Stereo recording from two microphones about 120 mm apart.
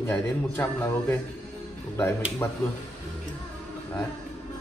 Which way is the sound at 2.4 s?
15° left (ahead or behind).